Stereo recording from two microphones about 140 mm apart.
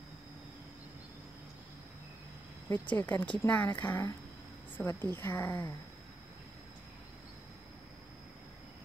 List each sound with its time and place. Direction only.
2.7 s a woman's voice: 15° left (ahead or behind)